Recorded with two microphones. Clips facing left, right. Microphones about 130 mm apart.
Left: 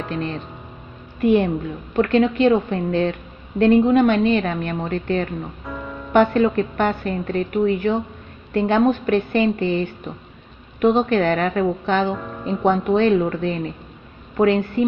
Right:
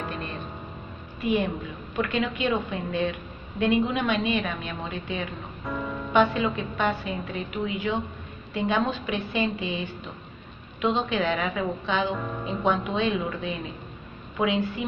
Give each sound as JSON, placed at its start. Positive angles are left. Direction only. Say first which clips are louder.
{"t": 0.0, "sound": "speech", "louder": "left 7 dB", "side_deg": 0}
{"t": 1.2, "sound": "a woman's voice", "louder": "left 9 dB", "side_deg": 60}
{"t": 5.7, "sound": "music", "louder": "even", "side_deg": 0}
{"t": 6.1, "sound": "a woman's voice", "louder": "left 7 dB", "side_deg": 55}
{"t": 12.1, "sound": "speech", "louder": "left 3 dB", "side_deg": 0}
{"t": 12.4, "sound": "a woman's voice", "louder": "left 8 dB", "side_deg": 55}